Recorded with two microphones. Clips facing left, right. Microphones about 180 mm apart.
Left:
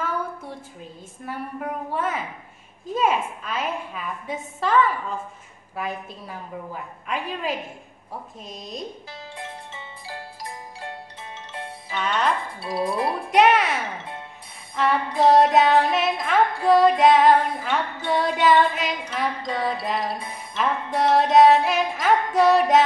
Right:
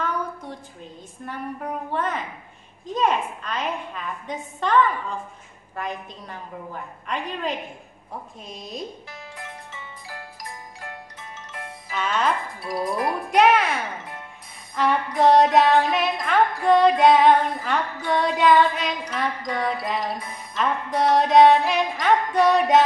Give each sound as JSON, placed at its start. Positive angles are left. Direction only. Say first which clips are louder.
{"t": 1.2, "sound": "music", "louder": "left 1 dB", "side_deg": 5}
{"t": 9.4, "sound": "music", "louder": "left 2 dB", "side_deg": 30}
{"t": 11.9, "sound": "music", "louder": "even", "side_deg": 0}
{"t": 12.6, "sound": "speech", "louder": "left 1 dB", "side_deg": 25}
{"t": 13.3, "sound": "music", "louder": "even", "side_deg": 0}
{"t": 15.1, "sound": "music", "louder": "even", "side_deg": 0}
{"t": 19.4, "sound": "speech", "louder": "even", "side_deg": 25}
{"t": 19.8, "sound": "music", "louder": "even", "side_deg": 0}